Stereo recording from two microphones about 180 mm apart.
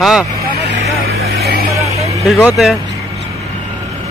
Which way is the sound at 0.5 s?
70° right (ahead or behind).